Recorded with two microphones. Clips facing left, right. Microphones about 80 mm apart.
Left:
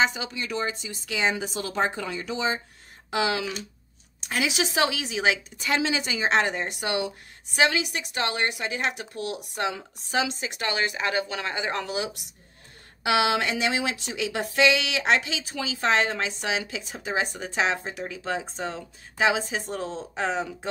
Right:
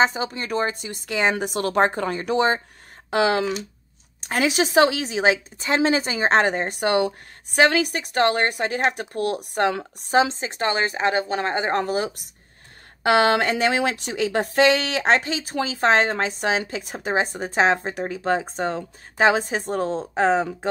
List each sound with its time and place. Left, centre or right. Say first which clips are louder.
0.0 s a woman's voice: right 4 dB; right
10.1 s a woman's voice: right 7 dB; right
17.1 s a woman's voice: right 5 dB; right